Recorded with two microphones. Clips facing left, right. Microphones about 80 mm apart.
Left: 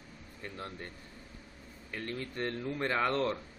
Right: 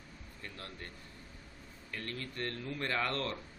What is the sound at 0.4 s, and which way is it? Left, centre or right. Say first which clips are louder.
Speech: left 5 dB; left.